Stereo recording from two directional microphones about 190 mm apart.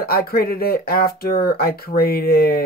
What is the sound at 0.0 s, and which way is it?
Speech, 55° left (ahead or behind).